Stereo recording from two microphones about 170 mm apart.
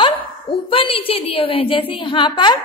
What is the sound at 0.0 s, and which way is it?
A woman's voice, 30° left (ahead or behind).